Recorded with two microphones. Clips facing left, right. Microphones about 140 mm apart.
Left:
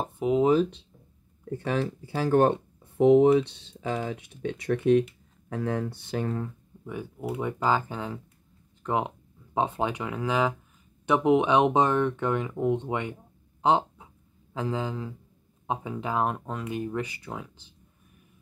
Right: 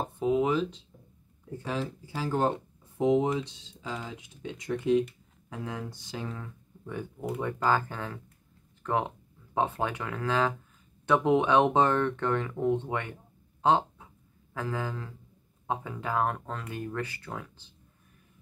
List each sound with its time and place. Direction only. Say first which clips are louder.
0.2 s a sound: left 3 dB; 25° left (ahead or behind)
1.6 s speech: left 5 dB; 65° left (ahead or behind)
6.8 s speech: left 1 dB; 5° left (ahead or behind)
13.6 s chicken: left 1 dB; 15° left (ahead or behind)
14.5 s a man's voice: left 3 dB; 20° left (ahead or behind)